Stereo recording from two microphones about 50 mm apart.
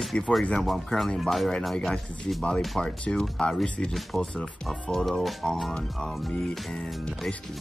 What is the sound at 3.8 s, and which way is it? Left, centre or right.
Speech, centre.